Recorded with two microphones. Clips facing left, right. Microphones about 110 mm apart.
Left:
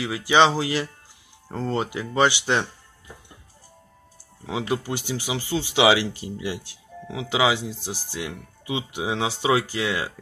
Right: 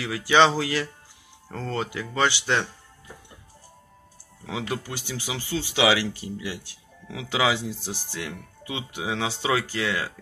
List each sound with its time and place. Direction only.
0.5 s speech: 20° left (ahead or behind)
4.5 s speech: 15° left (ahead or behind)